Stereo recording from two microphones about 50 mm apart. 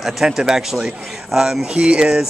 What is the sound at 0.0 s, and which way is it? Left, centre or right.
Speech, centre.